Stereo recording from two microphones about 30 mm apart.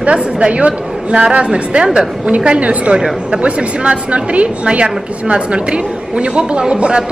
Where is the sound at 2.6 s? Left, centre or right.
Right.